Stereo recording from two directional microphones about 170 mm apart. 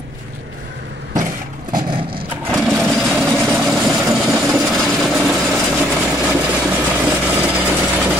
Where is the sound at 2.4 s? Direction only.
Centre (ahead or behind).